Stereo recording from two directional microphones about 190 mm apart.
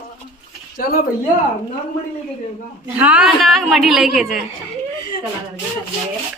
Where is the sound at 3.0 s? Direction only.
5° right (ahead or behind).